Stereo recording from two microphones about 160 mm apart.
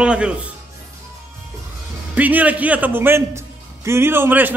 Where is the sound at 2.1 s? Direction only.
10° right (ahead or behind).